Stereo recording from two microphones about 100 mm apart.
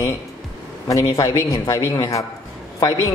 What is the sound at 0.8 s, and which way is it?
A man's voice, 35° left (ahead or behind).